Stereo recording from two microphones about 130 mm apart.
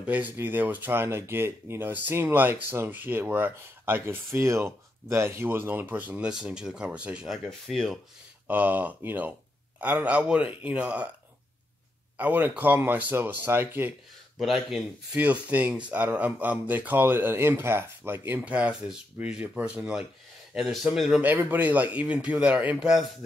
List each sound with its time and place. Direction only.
0.0 s speech: 10° right (ahead or behind)
8.5 s speech: 15° right (ahead or behind)
12.2 s speech: 10° right (ahead or behind)
14.4 s speech: centre (ahead or behind)
15.1 s speech: 10° right (ahead or behind)
21.3 s speech: 15° right (ahead or behind)